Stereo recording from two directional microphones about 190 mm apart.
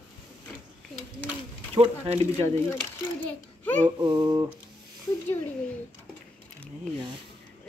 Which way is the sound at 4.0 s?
20° right (ahead or behind).